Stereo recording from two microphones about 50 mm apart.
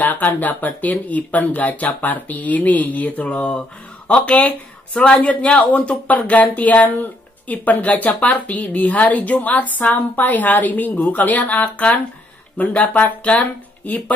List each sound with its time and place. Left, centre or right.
0.0 s a man's voice: left